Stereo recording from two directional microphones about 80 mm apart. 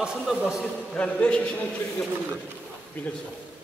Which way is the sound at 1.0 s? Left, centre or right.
Centre.